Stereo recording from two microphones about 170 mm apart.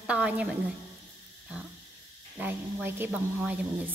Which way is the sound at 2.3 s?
10° right (ahead or behind).